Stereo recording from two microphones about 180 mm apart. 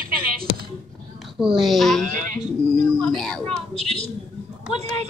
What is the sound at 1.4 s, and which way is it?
Speech, centre (ahead or behind).